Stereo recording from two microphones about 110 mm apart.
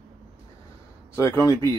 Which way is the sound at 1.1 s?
25° left (ahead or behind).